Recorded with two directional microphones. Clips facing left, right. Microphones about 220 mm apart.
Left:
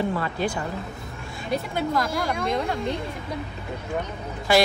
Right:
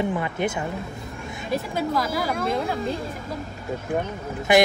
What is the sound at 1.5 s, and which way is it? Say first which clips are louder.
Speech: even; centre (ahead or behind).